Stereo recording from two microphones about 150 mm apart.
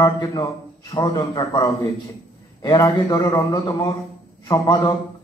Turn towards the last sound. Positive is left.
turn(degrees=25)  # may be behind; listen again after turning